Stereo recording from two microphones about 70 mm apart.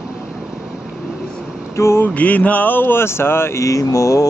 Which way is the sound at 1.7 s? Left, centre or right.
Left.